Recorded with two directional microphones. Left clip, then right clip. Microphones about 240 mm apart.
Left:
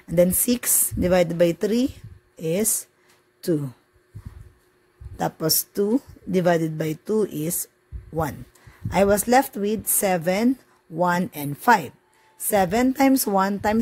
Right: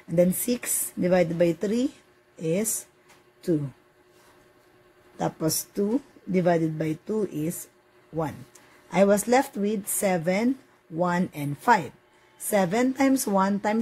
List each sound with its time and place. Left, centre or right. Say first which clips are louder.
0.1 s speech: left 3 dB; left
5.1 s speech: left 3 dB; left
8.9 s speech: left 3 dB; left